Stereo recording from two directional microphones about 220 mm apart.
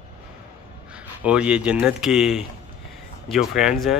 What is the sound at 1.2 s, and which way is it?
Speech, 5° right (ahead or behind).